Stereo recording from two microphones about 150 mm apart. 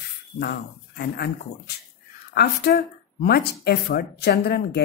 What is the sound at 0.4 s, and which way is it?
Speech, 90° left.